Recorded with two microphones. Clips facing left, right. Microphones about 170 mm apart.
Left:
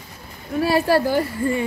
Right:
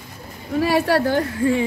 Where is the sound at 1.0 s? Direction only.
10° left (ahead or behind).